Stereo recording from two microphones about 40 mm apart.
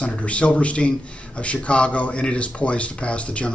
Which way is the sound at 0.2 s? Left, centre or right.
Left.